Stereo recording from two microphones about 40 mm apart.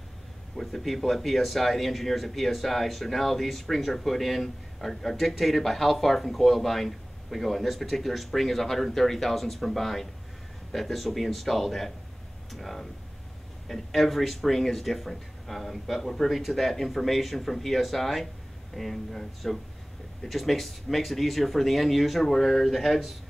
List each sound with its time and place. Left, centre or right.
0.6 s speech: centre